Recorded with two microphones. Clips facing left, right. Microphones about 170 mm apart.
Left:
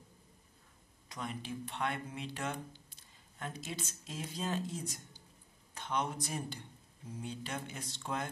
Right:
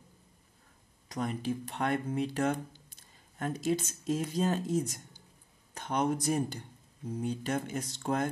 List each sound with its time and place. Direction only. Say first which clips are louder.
1.0 s speech: right 9 dB; 40° right (ahead or behind)